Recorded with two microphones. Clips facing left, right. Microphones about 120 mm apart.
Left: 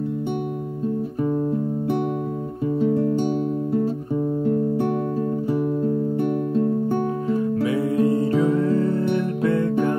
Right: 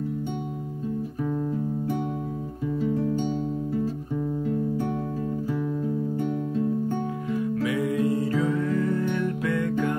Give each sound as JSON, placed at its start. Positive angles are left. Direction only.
{"t": 2.8, "sound": "music", "side_deg": 65}
{"t": 5.5, "sound": "music", "side_deg": 55}
{"t": 7.2, "sound": "music", "side_deg": 30}